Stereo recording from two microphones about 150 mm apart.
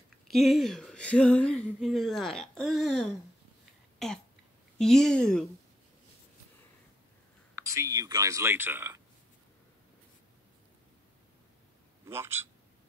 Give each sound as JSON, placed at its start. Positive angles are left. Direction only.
{"t": 0.3, "sound": "speech", "side_deg": 0}
{"t": 4.0, "sound": "throat clearing", "side_deg": 0}
{"t": 4.7, "sound": "speech", "side_deg": 5}
{"t": 7.5, "sound": "speech", "side_deg": -20}
{"t": 12.1, "sound": "a man's voice", "side_deg": -15}